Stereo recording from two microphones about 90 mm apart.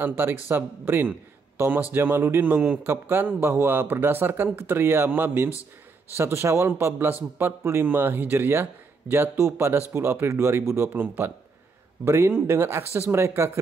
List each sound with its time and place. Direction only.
0.0 s speech: 25° right (ahead or behind)
5.5 s speech: 35° left (ahead or behind)
6.1 s speech: 30° right (ahead or behind)